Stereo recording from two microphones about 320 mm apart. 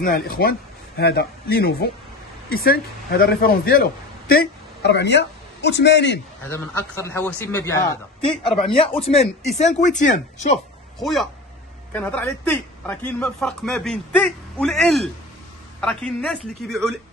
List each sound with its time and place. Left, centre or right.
0.0 s a man's voice: left
6.5 s a man's voice: centre; by 10.6 s left
11.0 s a man's voice: centre